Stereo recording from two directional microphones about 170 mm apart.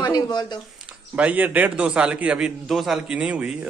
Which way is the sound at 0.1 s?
25° left (ahead or behind).